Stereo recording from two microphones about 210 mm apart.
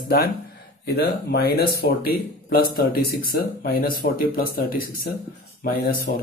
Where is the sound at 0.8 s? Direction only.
50° left (ahead or behind).